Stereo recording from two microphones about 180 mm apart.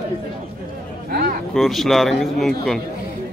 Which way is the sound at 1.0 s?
55° right (ahead or behind).